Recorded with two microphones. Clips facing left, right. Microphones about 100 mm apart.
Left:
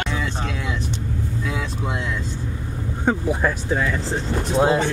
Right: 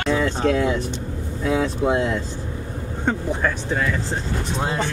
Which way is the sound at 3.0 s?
10° left (ahead or behind).